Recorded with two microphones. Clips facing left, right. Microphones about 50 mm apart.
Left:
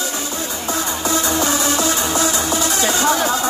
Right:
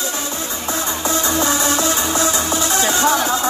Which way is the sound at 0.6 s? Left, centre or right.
Right.